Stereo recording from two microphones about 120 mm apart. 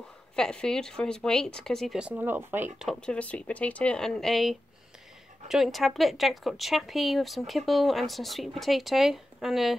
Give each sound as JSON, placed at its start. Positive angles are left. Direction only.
{"t": 0.4, "sound": "speech", "side_deg": 5}
{"t": 2.0, "sound": "speech", "side_deg": -10}
{"t": 2.8, "sound": "speech", "side_deg": 5}